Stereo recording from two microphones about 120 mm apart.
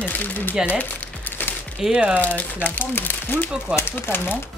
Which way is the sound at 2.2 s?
15° left (ahead or behind).